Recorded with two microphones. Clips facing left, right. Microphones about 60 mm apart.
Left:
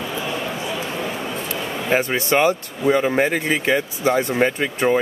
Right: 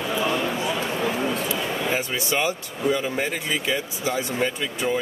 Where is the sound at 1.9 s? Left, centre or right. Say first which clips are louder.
Left 12 dB; left.